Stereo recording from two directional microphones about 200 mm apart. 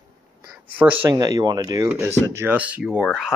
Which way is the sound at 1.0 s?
20° right (ahead or behind).